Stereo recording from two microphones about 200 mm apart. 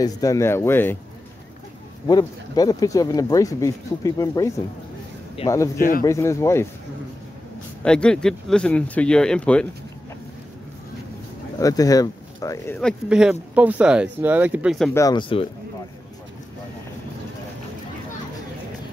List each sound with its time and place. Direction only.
0.0 s speech: 15° left (ahead or behind)
2.0 s speech: 20° left (ahead or behind)
5.4 s speech: 30° left (ahead or behind)
5.8 s speech: 45° left (ahead or behind)
6.0 s speech: 15° left (ahead or behind)
7.8 s speech: 5° left (ahead or behind)
11.6 s speech: 20° left (ahead or behind)
13.1 s speech: 5° right (ahead or behind)
15.0 s speech: 20° left (ahead or behind)